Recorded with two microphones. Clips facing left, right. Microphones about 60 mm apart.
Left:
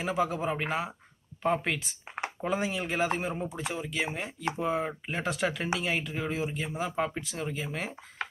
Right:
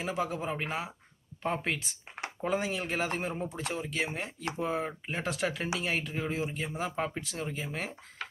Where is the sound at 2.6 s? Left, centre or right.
Left.